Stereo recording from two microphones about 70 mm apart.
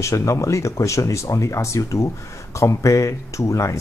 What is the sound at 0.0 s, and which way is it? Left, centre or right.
Speech, left.